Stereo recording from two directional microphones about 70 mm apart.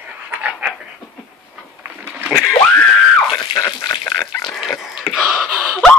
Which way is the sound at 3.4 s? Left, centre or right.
Left.